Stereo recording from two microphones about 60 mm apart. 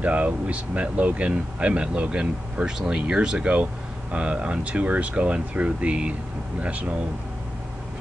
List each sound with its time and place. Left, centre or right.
0.0 s speech: right